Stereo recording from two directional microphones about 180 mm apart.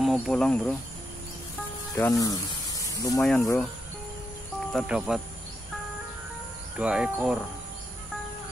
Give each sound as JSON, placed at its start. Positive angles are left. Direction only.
{"t": 0.0, "sound": "insect", "side_deg": 0}
{"t": 2.0, "sound": "speech", "side_deg": 15}
{"t": 3.2, "sound": "speech", "side_deg": 5}
{"t": 4.7, "sound": "speech", "side_deg": -5}
{"t": 6.8, "sound": "speech", "side_deg": -5}